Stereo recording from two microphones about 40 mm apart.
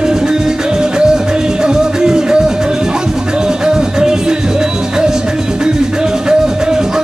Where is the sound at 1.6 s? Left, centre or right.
Centre.